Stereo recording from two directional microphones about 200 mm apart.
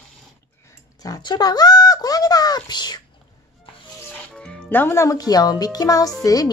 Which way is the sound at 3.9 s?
5° left (ahead or behind).